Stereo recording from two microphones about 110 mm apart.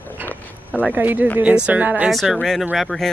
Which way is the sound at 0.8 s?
15° right (ahead or behind).